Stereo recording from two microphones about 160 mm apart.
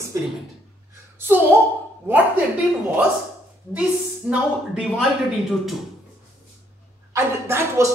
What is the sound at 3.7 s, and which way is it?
A woman's voice, 10° right (ahead or behind).